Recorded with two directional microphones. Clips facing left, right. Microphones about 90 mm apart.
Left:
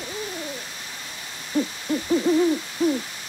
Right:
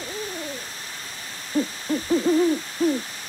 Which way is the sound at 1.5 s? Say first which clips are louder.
Even; 35° right (ahead or behind).